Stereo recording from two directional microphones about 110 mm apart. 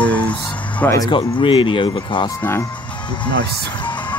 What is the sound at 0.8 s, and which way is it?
Speech, 30° left (ahead or behind).